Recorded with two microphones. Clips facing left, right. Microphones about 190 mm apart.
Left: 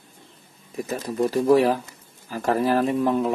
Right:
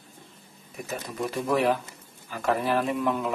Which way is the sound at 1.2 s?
35° left (ahead or behind).